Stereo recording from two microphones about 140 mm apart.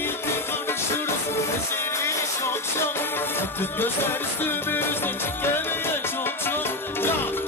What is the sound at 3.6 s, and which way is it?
A man's voice, 15° left (ahead or behind).